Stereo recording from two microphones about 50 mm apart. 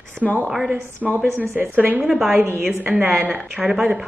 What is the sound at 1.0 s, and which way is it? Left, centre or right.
Speech, centre.